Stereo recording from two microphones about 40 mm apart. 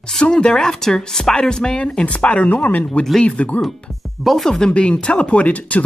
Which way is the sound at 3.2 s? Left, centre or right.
Left.